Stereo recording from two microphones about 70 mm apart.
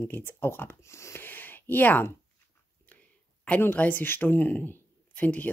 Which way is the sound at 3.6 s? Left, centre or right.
Left.